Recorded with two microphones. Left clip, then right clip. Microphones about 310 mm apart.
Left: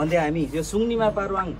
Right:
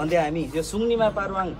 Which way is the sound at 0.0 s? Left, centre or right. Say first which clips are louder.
Even; left.